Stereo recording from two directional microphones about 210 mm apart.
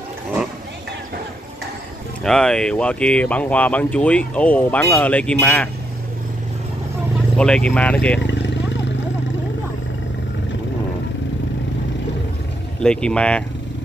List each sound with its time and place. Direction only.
2.2 s speech: 5° left (ahead or behind)
7.3 s speech: 5° left (ahead or behind)
8.2 s vehicle: 60° left (ahead or behind)
12.8 s speech: 5° left (ahead or behind)